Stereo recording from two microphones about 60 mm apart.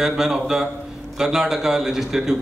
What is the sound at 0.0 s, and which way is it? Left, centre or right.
A man's voice, centre.